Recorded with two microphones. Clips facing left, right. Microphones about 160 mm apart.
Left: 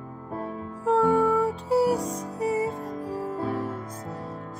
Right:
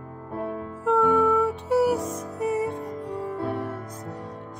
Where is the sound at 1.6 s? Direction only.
Centre (ahead or behind).